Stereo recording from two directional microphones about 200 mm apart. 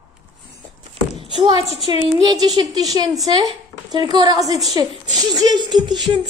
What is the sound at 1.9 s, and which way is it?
A woman's voice, 20° right (ahead or behind).